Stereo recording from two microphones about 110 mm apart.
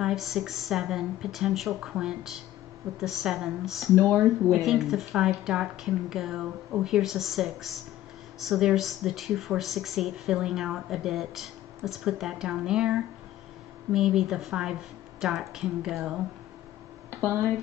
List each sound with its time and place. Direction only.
0.0 s speech: 5° right (ahead or behind)
17.1 s speech: 25° right (ahead or behind)